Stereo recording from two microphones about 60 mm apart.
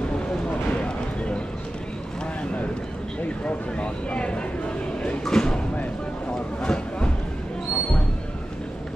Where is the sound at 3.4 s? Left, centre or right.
Centre.